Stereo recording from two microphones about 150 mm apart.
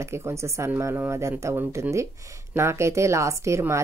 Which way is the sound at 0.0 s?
20° right (ahead or behind).